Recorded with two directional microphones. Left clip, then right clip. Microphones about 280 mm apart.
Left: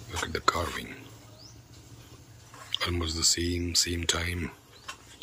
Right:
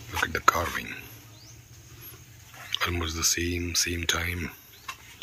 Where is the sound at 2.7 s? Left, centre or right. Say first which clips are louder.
Right 2 dB; centre.